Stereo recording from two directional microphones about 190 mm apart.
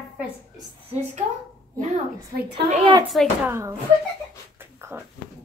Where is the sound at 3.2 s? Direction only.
Centre (ahead or behind).